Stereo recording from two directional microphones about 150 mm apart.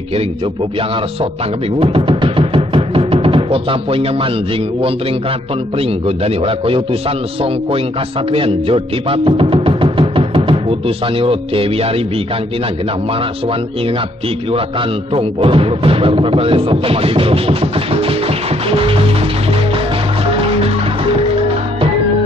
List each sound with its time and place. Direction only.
1.8 s music: 35° right (ahead or behind)
5.8 s speech: 40° right (ahead or behind)
8.3 s speech: 40° right (ahead or behind)
15.1 s speech: 40° right (ahead or behind)
18.7 s music: 40° right (ahead or behind)